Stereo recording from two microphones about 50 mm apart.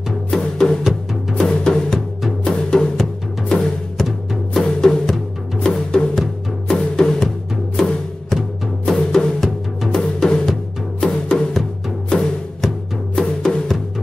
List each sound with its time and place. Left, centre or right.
0.3 s music: centre